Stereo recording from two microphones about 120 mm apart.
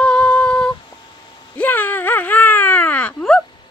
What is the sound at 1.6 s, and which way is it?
Baby cry, 15° left (ahead or behind).